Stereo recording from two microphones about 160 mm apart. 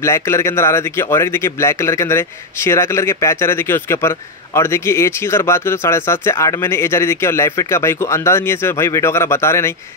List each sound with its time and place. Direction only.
0.0 s a man's voice: 15° left (ahead or behind)